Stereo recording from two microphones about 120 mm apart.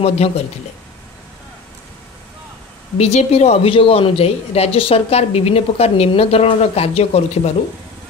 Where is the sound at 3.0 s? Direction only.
60° left (ahead or behind).